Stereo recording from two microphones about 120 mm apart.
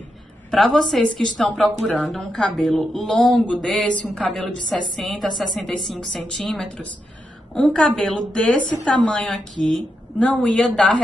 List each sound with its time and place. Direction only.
0.5 s a woman's voice: 5° left (ahead or behind)